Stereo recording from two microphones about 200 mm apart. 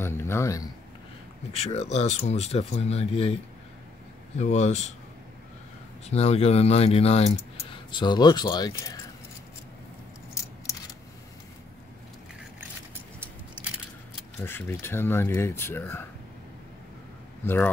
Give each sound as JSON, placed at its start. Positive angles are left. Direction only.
{"t": 0.0, "sound": "speech", "side_deg": 10}
{"t": 1.5, "sound": "speech", "side_deg": 30}
{"t": 4.4, "sound": "speech", "side_deg": 35}
{"t": 6.0, "sound": "speech", "side_deg": 30}
{"t": 14.4, "sound": "speech", "side_deg": 10}